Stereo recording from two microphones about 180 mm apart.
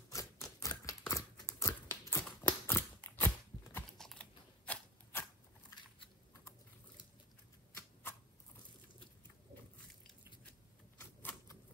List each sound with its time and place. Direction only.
0.1 s typewriter: 20° left (ahead or behind)
4.0 s typing: 5° left (ahead or behind)
5.7 s a sound: 20° left (ahead or behind)
11.0 s typewriter: 10° left (ahead or behind)